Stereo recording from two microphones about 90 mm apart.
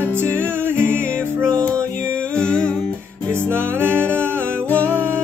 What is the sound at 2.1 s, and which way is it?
Music, 10° left (ahead or behind).